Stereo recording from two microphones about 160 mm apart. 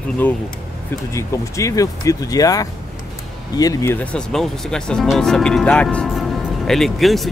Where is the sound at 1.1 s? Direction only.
20° left (ahead or behind).